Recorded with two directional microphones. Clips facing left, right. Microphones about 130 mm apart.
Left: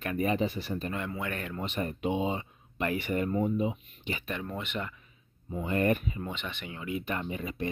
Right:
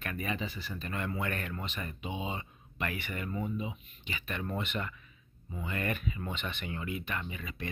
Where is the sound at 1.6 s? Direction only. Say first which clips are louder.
Left 7 dB; 50° left (ahead or behind).